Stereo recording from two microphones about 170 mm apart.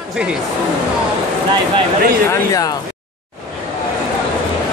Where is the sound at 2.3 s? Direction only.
20° left (ahead or behind).